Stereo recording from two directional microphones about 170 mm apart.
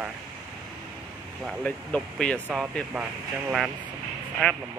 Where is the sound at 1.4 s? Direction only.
5° left (ahead or behind).